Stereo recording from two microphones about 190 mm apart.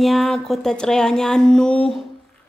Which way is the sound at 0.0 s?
Centre (ahead or behind).